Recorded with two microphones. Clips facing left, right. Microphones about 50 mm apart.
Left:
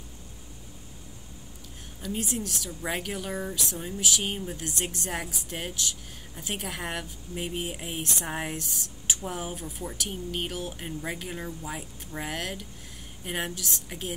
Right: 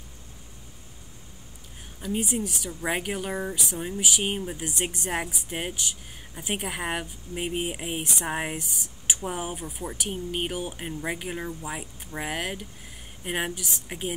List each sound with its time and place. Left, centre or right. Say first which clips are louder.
2.0 s speech: right 4 dB; centre